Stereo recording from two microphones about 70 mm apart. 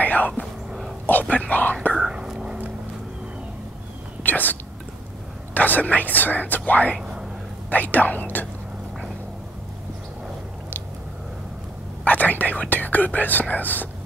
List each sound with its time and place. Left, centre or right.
0.0 s whispering: left
0.7 s dog: centre
1.3 s speech: left
2.0 s whispering: centre
4.2 s speech: left
7.0 s a sound: centre
7.7 s speech: left
12.0 s speech: left